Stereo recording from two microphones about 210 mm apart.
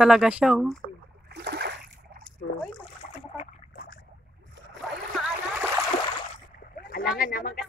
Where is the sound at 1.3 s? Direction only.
50° right (ahead or behind).